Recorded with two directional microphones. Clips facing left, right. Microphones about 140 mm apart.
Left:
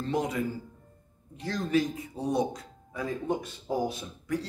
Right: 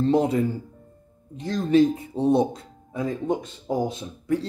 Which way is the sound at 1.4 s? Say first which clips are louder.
Right 8 dB; 25° right (ahead or behind).